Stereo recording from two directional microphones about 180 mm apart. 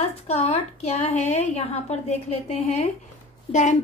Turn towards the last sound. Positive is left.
turn(degrees=40)  # may be behind; listen again after turning